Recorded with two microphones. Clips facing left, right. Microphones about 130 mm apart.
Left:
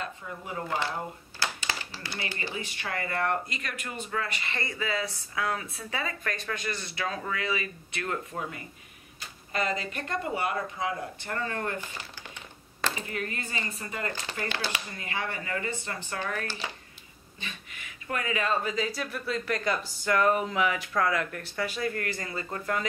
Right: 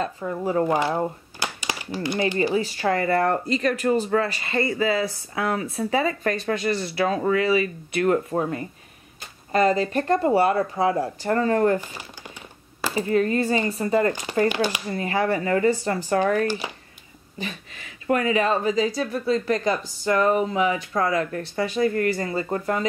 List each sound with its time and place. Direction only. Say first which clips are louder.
0.5 s speech: right 13 dB; 40° right (ahead or behind)
1.4 s a sound: right 3 dB; 15° right (ahead or behind)
2.5 s speech: right 13 dB; 35° right (ahead or behind)
12.9 s speech: right 14 dB; 30° right (ahead or behind)
14.5 s speech: right 9 dB; 15° right (ahead or behind)
14.9 s speech: right 12 dB; 35° right (ahead or behind)
16.4 s speech: right 10 dB; 15° right (ahead or behind)
17.4 s speech: right 9 dB; 35° right (ahead or behind)